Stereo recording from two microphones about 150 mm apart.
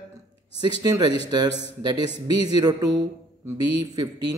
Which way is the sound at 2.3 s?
25° right (ahead or behind).